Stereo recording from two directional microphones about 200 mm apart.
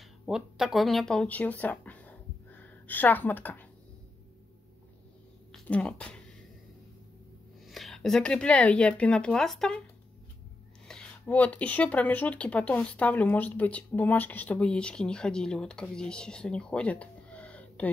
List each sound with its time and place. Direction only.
0.3 s speech: centre (ahead or behind)
5.5 s a sound: 5° left (ahead or behind)
7.6 s speech: centre (ahead or behind)
10.9 s speech: 5° left (ahead or behind)